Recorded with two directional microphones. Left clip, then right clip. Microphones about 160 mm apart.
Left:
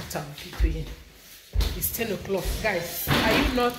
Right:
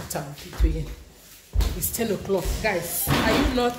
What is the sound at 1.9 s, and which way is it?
Speech, 20° right (ahead or behind).